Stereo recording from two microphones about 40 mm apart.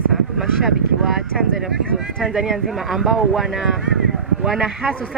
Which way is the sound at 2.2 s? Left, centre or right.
Centre.